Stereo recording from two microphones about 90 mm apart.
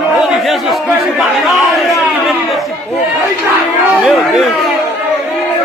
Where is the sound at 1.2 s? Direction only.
Centre (ahead or behind).